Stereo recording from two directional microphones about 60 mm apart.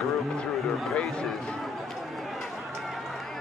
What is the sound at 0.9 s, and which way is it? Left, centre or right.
Speech, centre.